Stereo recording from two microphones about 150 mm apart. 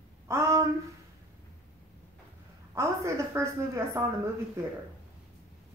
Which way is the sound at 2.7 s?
20° right (ahead or behind).